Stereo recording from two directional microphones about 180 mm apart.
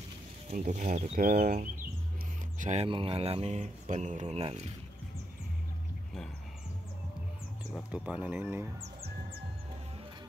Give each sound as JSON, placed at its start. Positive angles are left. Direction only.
{"t": 0.5, "sound": "speech", "side_deg": -45}
{"t": 2.6, "sound": "speech", "side_deg": -35}
{"t": 7.7, "sound": "speech", "side_deg": -5}